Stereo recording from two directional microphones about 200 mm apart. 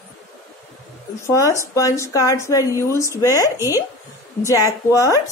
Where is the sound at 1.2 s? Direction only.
15° left (ahead or behind).